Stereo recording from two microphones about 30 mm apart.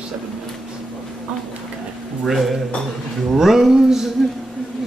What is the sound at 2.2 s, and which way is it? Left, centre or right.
A woman's voice, centre.